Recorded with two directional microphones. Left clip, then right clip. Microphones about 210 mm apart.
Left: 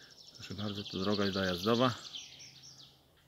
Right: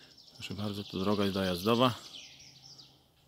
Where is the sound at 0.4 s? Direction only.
20° right (ahead or behind).